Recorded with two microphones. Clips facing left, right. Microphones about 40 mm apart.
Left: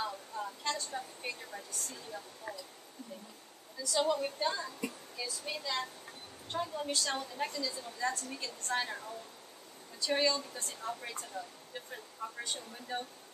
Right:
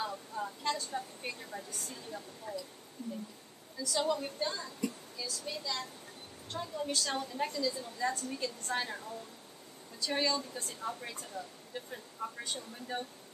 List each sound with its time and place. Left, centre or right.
0.0 s a sound: centre
2.5 s speech: left
3.8 s a woman's voice: centre
6.9 s speech: centre